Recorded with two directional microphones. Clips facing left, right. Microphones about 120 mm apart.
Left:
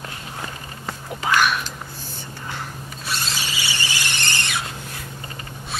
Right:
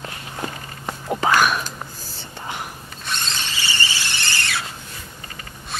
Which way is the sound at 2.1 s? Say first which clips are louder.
Right 2 dB; 20° right (ahead or behind).